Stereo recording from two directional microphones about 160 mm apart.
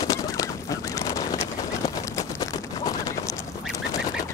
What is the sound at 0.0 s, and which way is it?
Goose, 20° left (ahead or behind).